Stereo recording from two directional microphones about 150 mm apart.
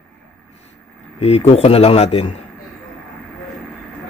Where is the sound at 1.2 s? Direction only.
40° left (ahead or behind).